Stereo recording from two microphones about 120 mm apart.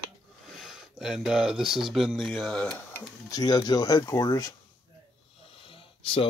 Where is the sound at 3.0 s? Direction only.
30° left (ahead or behind).